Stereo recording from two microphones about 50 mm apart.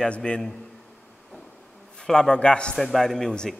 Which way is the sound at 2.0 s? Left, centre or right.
Centre.